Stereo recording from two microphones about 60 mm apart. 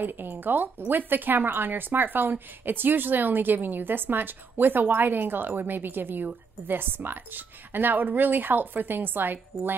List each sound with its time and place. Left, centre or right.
0.0 s speech: right